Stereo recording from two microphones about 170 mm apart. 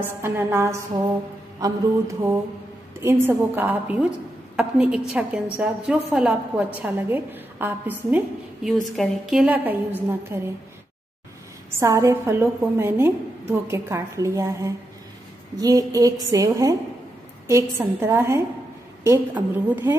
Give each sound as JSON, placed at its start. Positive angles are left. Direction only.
{"t": 0.0, "sound": "a woman's voice", "side_deg": -15}
{"t": 8.6, "sound": "a woman's voice", "side_deg": 0}
{"t": 11.7, "sound": "a woman's voice", "side_deg": -15}